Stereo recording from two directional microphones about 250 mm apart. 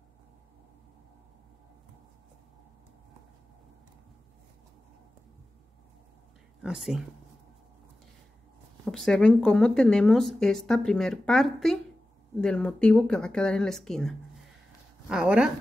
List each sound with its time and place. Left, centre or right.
6.6 s speech: centre
8.9 s speech: centre